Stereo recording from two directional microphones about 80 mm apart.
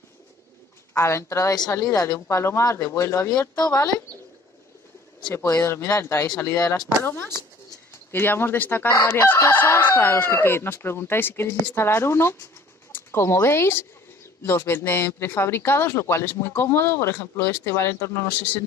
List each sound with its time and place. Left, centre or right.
0.9 s speech: left
3.3 s speech: left
5.3 s speech: left
8.1 s chicken: left
12.9 s speech: left
14.4 s chicken: left
17.7 s speech: left